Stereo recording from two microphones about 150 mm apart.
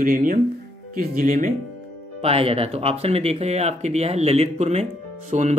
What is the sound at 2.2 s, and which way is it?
Speech, 40° right (ahead or behind).